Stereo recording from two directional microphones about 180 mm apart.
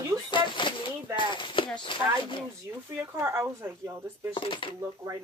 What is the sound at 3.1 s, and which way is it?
Speech, 15° right (ahead or behind).